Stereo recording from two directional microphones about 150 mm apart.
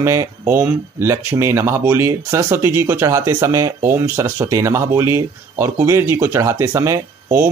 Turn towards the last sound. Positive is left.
turn(degrees=-20)  # may be behind; listen again after turning